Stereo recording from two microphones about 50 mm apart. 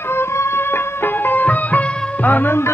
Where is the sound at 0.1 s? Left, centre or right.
Left.